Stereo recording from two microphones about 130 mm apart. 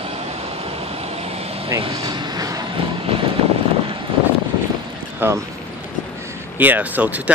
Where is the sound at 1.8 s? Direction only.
45° right (ahead or behind).